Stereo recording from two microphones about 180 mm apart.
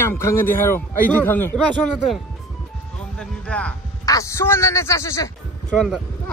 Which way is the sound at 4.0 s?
20° left (ahead or behind).